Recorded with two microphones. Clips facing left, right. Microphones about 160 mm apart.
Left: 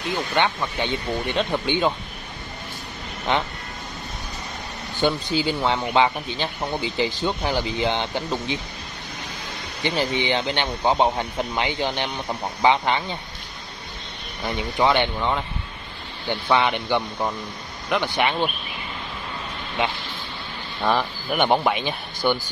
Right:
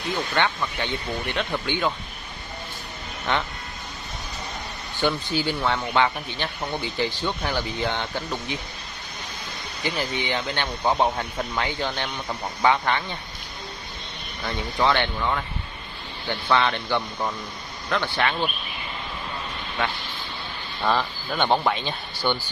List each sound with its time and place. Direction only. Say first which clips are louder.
0.3 s speech: left 3 dB; 15° left (ahead or behind)
5.0 s speech: left 2 dB; 20° left (ahead or behind)
9.8 s speech: left 4 dB; 25° left (ahead or behind)
14.4 s speech: left 2 dB; 15° left (ahead or behind)
19.8 s speech: left 3 dB; 20° left (ahead or behind)